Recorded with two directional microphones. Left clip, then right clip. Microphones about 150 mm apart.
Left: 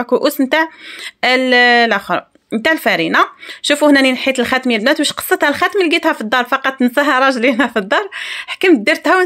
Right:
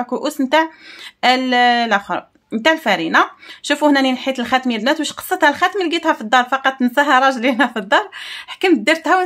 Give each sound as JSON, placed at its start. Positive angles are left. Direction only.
{"t": 0.0, "sound": "speech", "side_deg": 30}